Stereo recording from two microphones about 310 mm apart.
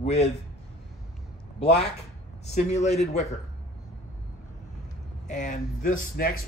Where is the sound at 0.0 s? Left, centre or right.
Centre.